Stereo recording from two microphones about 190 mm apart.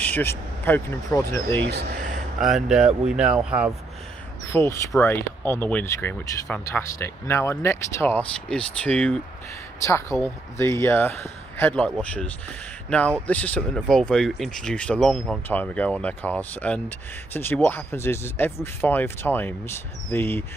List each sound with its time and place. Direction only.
0.0 s speech: 10° left (ahead or behind)
1.6 s speech: 65° right (ahead or behind)
2.4 s speech: 5° right (ahead or behind)
4.5 s speech: 15° left (ahead or behind)